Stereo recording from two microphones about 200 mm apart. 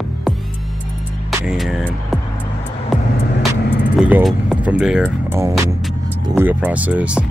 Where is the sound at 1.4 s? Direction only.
5° right (ahead or behind).